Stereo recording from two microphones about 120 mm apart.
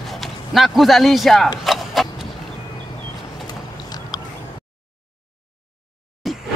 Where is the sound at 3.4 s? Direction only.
35° left (ahead or behind).